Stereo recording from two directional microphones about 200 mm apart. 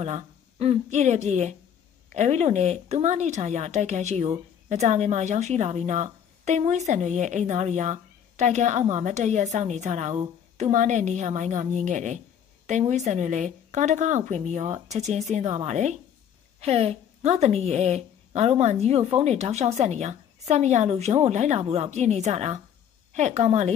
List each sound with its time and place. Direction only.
0.0 s speech: 30° right (ahead or behind)